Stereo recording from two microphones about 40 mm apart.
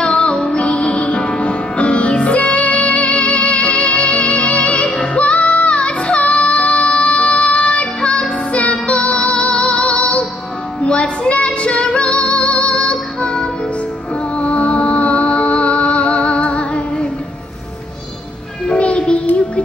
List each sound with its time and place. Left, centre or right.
0.2 s music: left
14.3 s music: left
18.7 s child singing: left